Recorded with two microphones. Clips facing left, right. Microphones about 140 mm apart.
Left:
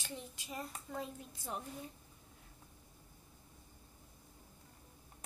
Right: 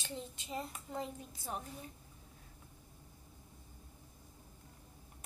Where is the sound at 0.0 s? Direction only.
25° right (ahead or behind).